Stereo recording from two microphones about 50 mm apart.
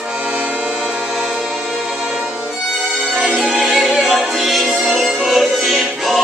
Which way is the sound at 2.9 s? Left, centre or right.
Centre.